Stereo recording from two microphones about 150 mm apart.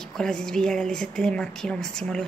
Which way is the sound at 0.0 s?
5° left (ahead or behind).